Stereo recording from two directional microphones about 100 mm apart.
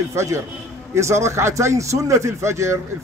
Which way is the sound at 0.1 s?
30° right (ahead or behind).